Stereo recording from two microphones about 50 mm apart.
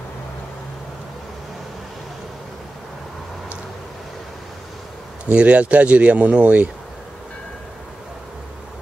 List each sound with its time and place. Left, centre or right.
5.2 s speech: right